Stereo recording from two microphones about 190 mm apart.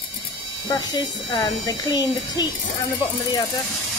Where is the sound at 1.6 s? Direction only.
20° left (ahead or behind).